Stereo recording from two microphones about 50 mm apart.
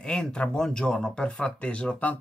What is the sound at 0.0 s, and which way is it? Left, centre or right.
Speech, centre.